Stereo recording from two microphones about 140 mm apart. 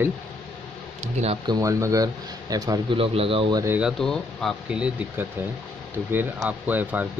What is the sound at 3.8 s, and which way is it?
Speech, centre (ahead or behind).